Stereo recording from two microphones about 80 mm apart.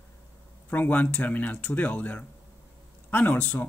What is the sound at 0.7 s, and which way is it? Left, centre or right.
Speech, left.